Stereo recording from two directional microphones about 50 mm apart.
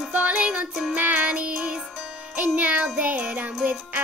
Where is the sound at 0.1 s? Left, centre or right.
Right.